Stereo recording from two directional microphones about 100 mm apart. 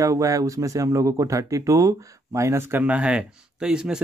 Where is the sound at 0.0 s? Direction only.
35° right (ahead or behind).